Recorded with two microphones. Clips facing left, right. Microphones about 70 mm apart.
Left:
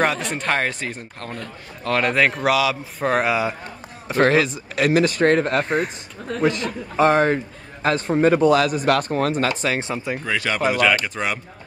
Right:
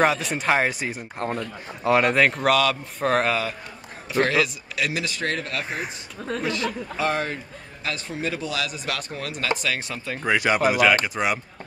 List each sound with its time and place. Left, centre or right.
0.3 s a man's voice: centre
4.1 s speech: left
5.7 s a man's voice: centre
6.4 s speech: left
9.6 s speech: left
10.2 s speech: centre
10.6 s a man's voice: centre